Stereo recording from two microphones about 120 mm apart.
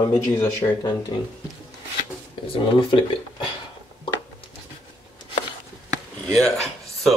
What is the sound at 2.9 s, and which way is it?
Speech, 50° left (ahead or behind).